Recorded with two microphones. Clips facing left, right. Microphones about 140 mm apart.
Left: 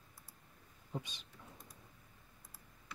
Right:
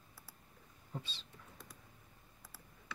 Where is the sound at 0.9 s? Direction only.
15° left (ahead or behind).